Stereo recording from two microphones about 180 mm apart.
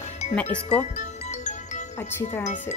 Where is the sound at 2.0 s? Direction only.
10° left (ahead or behind).